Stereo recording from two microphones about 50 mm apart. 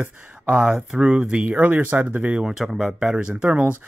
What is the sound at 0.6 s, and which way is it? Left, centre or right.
Speech, centre.